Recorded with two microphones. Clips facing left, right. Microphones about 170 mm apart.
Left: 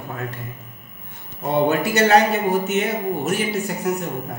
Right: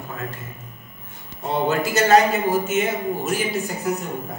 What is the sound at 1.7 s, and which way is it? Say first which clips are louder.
A man's voice: right 1 dB; 60° left (ahead or behind).